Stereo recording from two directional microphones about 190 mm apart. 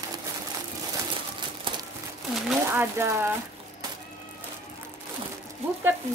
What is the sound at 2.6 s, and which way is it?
Speech, 15° right (ahead or behind).